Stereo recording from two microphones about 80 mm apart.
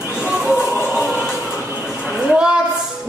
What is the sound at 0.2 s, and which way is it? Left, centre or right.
Music, centre.